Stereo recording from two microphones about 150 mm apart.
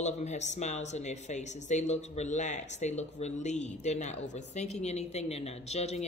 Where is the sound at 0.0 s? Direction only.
50° left (ahead or behind).